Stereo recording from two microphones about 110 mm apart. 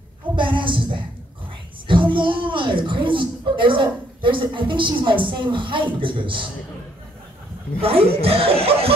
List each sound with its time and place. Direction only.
0.4 s a sound: 50° right (ahead or behind)
1.9 s a woman's voice: 50° right (ahead or behind)
7.8 s speech: 65° right (ahead or behind)